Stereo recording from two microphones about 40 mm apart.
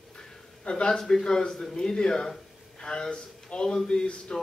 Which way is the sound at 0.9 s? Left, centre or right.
Centre.